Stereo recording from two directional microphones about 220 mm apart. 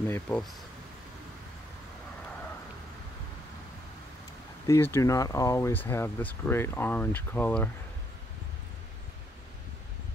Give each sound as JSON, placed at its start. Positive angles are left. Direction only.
{"t": 0.1, "sound": "speech", "side_deg": 5}
{"t": 4.6, "sound": "speech", "side_deg": 10}